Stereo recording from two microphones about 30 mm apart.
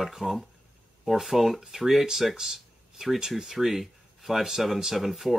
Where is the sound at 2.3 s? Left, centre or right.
Centre.